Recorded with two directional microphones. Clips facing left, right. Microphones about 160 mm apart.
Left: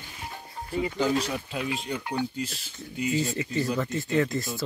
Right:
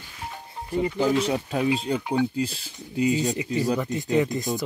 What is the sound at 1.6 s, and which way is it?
Speech, 30° right (ahead or behind).